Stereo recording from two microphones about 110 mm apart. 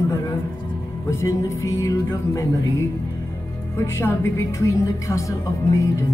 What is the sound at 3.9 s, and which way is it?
Music, 25° left (ahead or behind).